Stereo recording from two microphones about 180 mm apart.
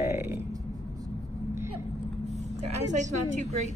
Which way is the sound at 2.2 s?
40° right (ahead or behind).